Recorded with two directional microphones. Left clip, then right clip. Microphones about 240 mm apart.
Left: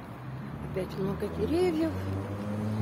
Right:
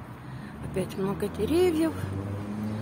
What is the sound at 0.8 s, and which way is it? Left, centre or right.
Speech, right.